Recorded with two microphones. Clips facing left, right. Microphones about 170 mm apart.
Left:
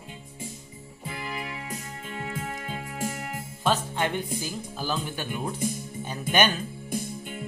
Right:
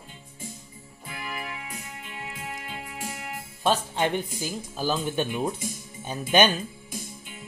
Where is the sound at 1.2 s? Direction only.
30° left (ahead or behind).